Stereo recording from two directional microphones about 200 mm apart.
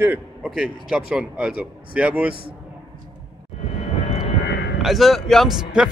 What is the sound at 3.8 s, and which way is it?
Vehicle, 30° left (ahead or behind).